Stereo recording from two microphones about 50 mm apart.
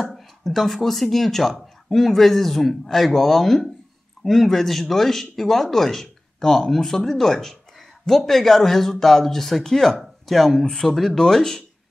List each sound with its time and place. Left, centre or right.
0.1 s speech: centre